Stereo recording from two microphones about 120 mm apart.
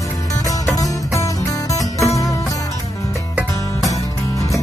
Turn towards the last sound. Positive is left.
turn(degrees=25)  # may be behind; listen again after turning